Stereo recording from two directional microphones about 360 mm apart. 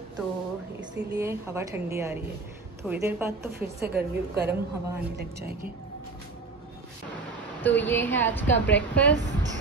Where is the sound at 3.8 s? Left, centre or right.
Right.